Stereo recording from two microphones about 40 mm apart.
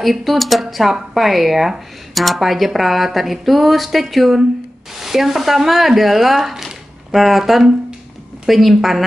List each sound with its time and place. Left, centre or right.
0.0 s speech: centre
4.9 s frying: centre
8.5 s speech: centre